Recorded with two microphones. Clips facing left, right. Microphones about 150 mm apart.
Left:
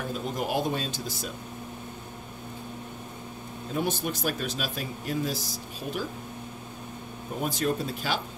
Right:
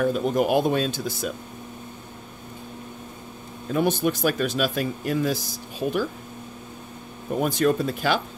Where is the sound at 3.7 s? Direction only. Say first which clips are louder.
Right 7 dB; 65° right (ahead or behind).